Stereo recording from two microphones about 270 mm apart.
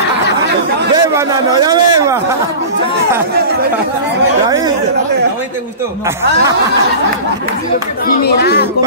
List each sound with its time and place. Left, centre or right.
0.9 s a man's voice: centre
8.1 s speech: left